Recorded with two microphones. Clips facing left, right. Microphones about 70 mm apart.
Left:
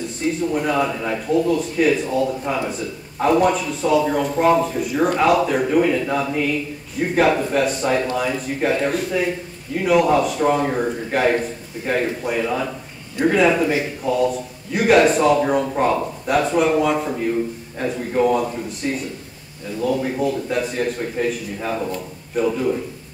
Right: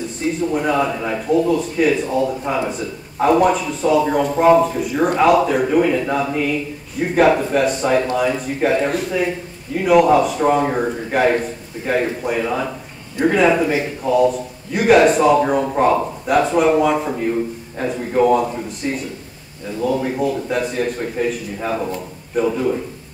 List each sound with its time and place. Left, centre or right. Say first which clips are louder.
0.4 s a man's voice: right 2 dB; centre